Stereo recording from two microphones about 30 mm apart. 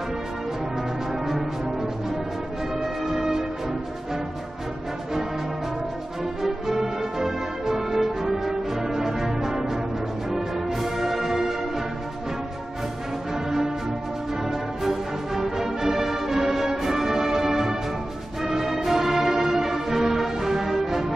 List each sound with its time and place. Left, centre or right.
1.2 s music: centre
6.4 s music: centre
14.5 s music: centre